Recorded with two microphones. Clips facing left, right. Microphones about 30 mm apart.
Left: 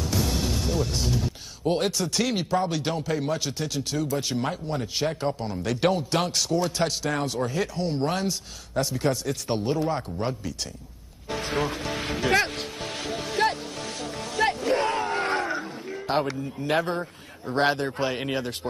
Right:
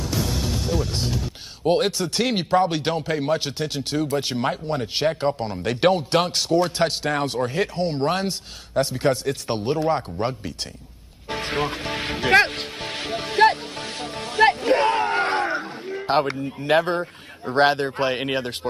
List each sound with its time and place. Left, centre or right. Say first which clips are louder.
0.7 s speech: right 3 dB; centre
1.6 s speech: right 4 dB; right
11.2 s music: right 2 dB; right
16.6 s speech: right 6 dB; right